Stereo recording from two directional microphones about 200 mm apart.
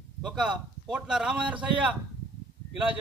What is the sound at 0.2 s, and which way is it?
A man's voice, centre (ahead or behind).